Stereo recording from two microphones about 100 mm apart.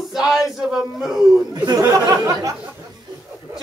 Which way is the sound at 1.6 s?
35° right (ahead or behind).